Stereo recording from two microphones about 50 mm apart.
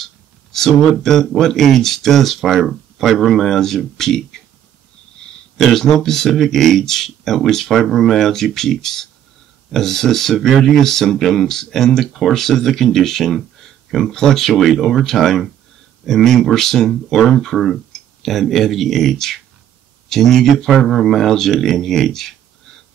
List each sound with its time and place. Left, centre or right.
0.0 s a sound: centre
0.9 s speech: centre
5.6 s speech: centre